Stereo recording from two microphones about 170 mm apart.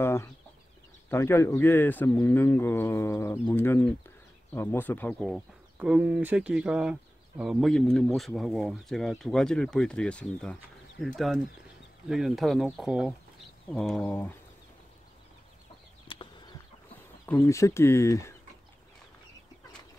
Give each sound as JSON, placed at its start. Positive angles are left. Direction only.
{"t": 0.0, "sound": "chicken", "side_deg": 15}
{"t": 1.1, "sound": "speech", "side_deg": 15}
{"t": 5.2, "sound": "speech", "side_deg": -5}
{"t": 16.1, "sound": "bird flight", "side_deg": 30}
{"t": 17.3, "sound": "speech", "side_deg": 15}